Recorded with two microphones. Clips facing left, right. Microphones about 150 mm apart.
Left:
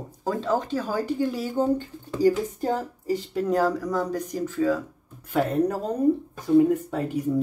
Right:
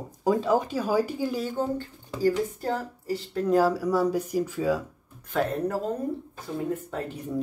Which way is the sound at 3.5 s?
5° right (ahead or behind).